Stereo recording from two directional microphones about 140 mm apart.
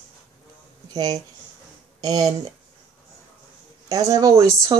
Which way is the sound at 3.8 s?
25° right (ahead or behind).